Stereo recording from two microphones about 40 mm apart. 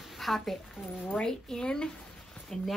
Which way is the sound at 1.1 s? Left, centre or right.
Centre.